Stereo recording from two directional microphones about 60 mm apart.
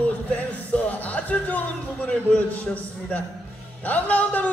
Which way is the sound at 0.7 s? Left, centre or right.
Left.